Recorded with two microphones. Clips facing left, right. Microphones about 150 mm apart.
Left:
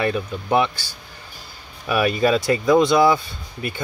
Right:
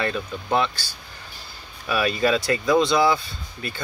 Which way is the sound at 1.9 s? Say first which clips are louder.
Left 3 dB; 15° left (ahead or behind).